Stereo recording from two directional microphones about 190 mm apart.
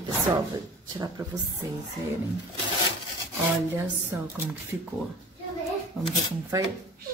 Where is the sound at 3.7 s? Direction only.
15° right (ahead or behind).